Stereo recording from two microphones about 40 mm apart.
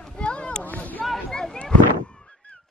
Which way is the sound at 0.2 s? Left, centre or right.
Left.